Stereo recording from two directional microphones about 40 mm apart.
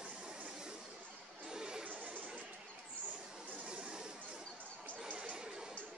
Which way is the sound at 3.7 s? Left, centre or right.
Centre.